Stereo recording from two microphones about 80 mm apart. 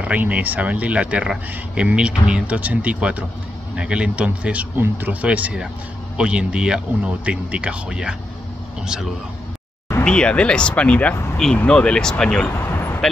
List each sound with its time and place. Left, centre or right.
0.0 s speech: centre
10.0 s speech: centre
12.4 s vehicle: left